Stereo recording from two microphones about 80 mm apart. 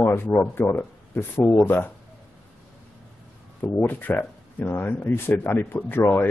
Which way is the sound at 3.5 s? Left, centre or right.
Left.